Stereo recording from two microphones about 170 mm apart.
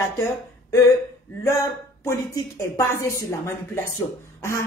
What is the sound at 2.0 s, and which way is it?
Speech, 15° left (ahead or behind).